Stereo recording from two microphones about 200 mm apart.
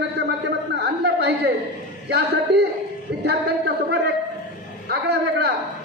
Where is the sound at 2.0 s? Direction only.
55° right (ahead or behind).